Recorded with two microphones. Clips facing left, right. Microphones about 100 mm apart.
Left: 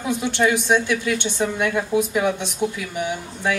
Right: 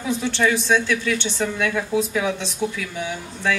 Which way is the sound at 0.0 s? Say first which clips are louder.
Left 1 dB; 15° left (ahead or behind).